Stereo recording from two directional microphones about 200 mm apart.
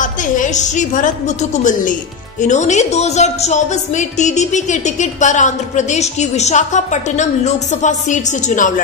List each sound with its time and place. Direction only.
0.0 s speech: 40° left (ahead or behind)